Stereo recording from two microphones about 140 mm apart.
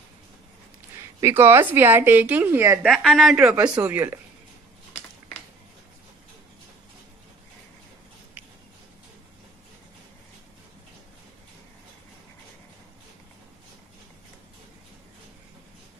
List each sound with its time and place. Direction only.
1.2 s a woman's voice: 15° right (ahead or behind)
2.8 s a woman's voice: centre (ahead or behind)
3.3 s a woman's voice: 15° right (ahead or behind)